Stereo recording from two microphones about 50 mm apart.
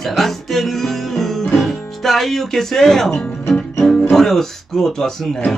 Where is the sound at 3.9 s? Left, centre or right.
Centre.